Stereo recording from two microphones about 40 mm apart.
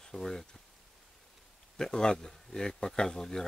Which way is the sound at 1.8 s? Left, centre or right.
Centre.